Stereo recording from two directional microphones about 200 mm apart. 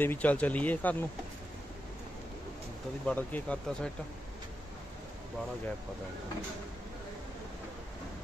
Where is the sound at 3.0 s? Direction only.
5° left (ahead or behind).